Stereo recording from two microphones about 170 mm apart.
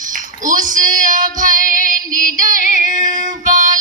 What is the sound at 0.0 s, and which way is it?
Child singing, 50° right (ahead or behind).